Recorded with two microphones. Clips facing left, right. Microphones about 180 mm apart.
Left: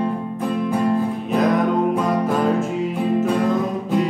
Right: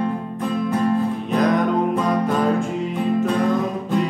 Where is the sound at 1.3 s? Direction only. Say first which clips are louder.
Left 1 dB; 5° left (ahead or behind).